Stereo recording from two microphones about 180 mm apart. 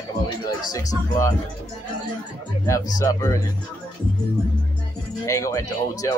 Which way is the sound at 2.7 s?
20° left (ahead or behind).